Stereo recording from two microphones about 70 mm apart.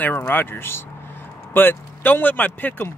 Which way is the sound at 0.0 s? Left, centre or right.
Left.